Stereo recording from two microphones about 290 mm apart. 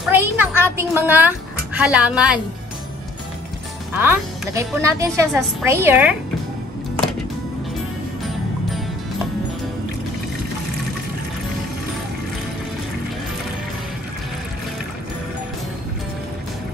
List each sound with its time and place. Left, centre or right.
0.0 s speech: centre
3.9 s a woman's voice: centre